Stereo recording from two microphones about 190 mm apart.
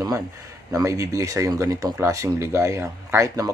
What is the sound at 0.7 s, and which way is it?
Speech, 15° right (ahead or behind).